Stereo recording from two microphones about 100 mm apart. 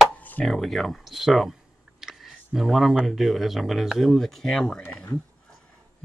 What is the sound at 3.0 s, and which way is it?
Speech, centre (ahead or behind).